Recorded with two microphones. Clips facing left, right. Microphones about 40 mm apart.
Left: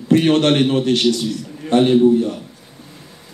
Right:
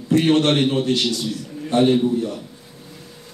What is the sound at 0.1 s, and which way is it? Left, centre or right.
Speech, left.